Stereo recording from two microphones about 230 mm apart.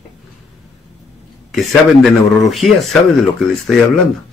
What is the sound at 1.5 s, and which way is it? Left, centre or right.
Speech, centre.